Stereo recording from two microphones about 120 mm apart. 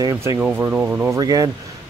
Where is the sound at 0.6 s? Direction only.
15° right (ahead or behind).